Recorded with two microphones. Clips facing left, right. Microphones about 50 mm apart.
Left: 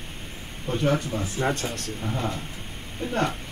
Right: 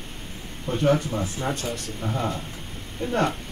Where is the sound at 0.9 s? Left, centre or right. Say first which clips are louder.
Right 2 dB; centre.